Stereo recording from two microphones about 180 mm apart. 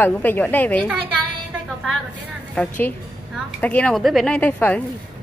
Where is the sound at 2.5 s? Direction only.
5° left (ahead or behind).